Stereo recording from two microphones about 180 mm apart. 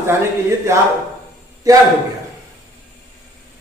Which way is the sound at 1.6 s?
20° right (ahead or behind).